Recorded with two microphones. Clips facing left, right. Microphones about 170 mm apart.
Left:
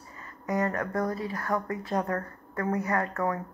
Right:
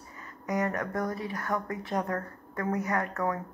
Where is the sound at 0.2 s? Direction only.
20° right (ahead or behind).